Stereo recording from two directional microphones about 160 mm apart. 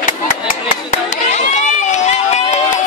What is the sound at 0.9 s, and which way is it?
Run, 45° left (ahead or behind).